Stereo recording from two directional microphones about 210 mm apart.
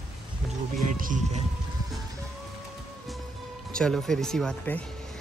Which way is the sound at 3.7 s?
5° left (ahead or behind).